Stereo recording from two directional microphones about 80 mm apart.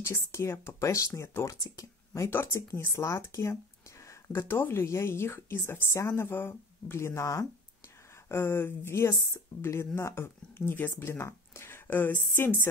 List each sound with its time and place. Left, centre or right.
0.0 s speech: left